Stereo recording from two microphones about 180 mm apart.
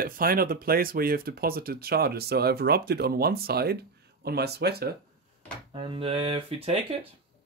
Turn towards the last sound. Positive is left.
turn(degrees=-30)  # may be behind; listen again after turning